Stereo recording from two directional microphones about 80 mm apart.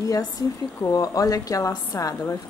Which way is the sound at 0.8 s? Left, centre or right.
Left.